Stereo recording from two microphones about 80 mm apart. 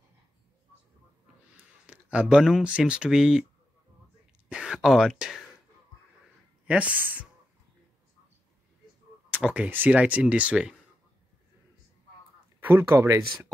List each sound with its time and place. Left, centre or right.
1.9 s speech: centre
4.5 s speech: centre
6.7 s speech: centre
9.5 s speech: right
12.5 s speech: right